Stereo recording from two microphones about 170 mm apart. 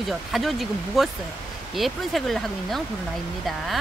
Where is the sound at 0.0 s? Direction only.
Centre (ahead or behind).